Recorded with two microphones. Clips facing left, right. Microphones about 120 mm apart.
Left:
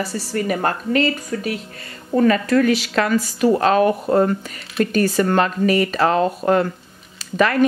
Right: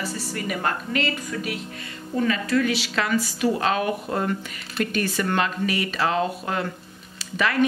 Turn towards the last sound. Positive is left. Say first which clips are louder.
# left 7 dB
turn(degrees=45)  # may be behind; listen again after turning